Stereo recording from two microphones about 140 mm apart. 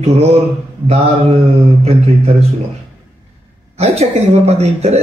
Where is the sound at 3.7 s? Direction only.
50° right (ahead or behind).